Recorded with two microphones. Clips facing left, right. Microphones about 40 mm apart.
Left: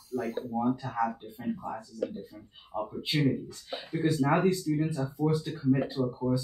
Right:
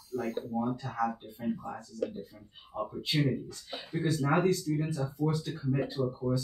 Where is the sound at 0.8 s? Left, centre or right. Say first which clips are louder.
Left 2 dB; left.